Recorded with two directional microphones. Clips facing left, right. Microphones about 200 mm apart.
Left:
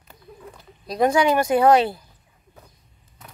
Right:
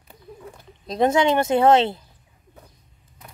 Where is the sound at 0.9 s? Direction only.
25° right (ahead or behind).